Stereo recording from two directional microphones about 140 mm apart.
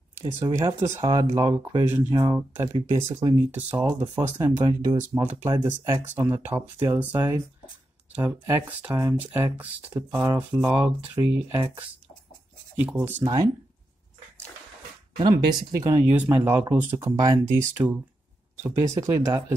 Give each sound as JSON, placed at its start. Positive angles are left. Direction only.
{"t": 0.1, "sound": "speech", "side_deg": -15}
{"t": 13.2, "sound": "speech", "side_deg": -30}
{"t": 16.1, "sound": "speech", "side_deg": -15}